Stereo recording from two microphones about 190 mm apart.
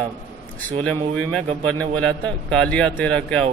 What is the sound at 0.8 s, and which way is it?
Speech, 5° left (ahead or behind).